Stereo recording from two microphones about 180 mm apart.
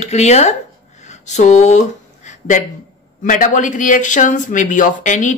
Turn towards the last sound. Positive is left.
turn(degrees=45)  # may be behind; listen again after turning